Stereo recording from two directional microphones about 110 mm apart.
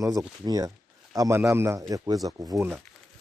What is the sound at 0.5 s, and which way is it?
Speech, 35° right (ahead or behind).